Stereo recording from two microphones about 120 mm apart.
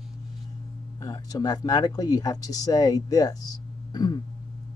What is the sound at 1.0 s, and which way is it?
Speech, 35° left (ahead or behind).